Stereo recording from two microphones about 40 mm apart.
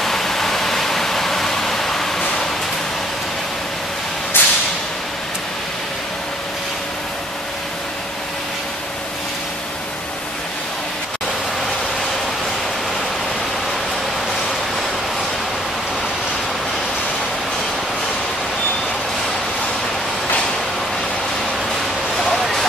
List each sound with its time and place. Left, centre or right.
0.0 s pink noise: centre
4.4 s whip: left
22.2 s a sound: centre